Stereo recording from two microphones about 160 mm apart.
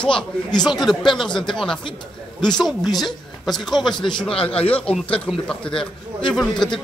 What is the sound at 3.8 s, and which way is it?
Speech, 30° left (ahead or behind).